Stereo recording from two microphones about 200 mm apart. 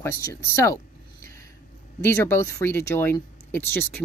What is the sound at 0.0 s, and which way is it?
Speech, 15° left (ahead or behind).